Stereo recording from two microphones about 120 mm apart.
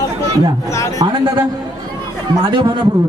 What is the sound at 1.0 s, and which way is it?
Speech, 45° right (ahead or behind).